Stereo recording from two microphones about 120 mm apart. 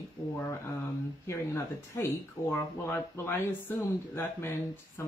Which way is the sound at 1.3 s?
25° left (ahead or behind).